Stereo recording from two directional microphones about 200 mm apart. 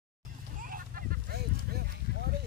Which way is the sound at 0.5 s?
45° right (ahead or behind).